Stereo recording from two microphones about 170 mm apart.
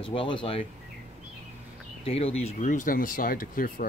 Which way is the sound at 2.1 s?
35° left (ahead or behind).